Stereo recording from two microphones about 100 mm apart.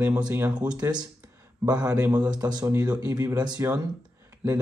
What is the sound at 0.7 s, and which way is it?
Speech, 45° right (ahead or behind).